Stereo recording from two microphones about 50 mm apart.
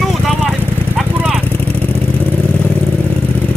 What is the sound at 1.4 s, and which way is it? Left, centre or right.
Vehicle, left.